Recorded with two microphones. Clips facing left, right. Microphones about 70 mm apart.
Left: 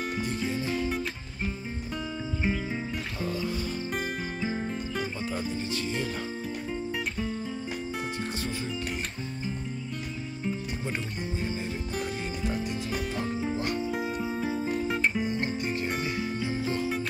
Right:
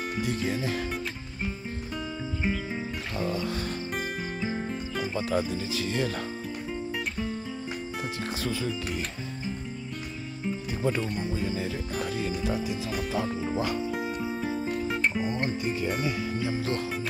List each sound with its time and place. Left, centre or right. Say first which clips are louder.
0.2 s speech: right 5 dB; right
2.4 s music: even; centre
3.3 s music: even; right
3.9 s music: even; centre
5.2 s speech: right 3 dB; right
13.4 s music: right 1 dB; centre
16.6 s music: even; right